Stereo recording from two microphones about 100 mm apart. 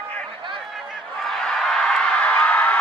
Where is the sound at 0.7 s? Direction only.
Centre (ahead or behind).